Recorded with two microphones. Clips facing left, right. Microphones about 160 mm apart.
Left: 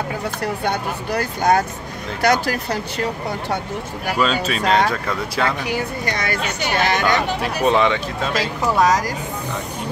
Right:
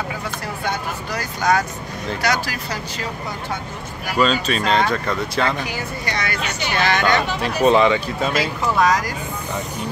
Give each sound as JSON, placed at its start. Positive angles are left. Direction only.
{"t": 0.7, "sound": "speech", "side_deg": 55}
{"t": 4.2, "sound": "speech", "side_deg": 5}
{"t": 5.7, "sound": "speech", "side_deg": 45}
{"t": 7.4, "sound": "speech", "side_deg": 0}
{"t": 8.4, "sound": "speech", "side_deg": 40}